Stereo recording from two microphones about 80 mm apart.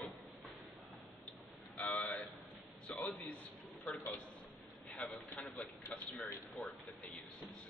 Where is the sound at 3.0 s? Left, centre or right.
Centre.